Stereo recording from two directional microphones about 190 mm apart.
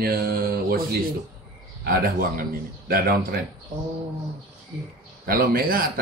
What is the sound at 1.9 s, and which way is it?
Speech, 50° right (ahead or behind).